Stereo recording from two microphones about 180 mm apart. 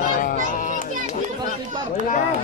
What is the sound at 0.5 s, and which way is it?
Speech, 45° left (ahead or behind).